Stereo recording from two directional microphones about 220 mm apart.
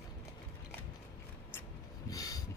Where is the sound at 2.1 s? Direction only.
15° left (ahead or behind).